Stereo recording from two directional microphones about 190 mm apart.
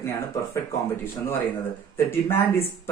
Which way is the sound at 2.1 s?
10° left (ahead or behind).